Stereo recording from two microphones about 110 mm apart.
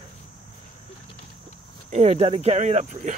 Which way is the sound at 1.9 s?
75° right (ahead or behind).